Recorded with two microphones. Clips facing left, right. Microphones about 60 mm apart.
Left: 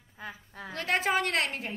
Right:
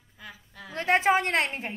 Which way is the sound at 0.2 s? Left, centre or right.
Left.